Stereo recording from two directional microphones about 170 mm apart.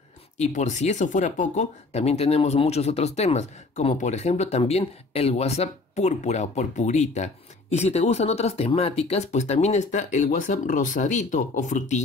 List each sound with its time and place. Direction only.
0.4 s speech: 45° left (ahead or behind)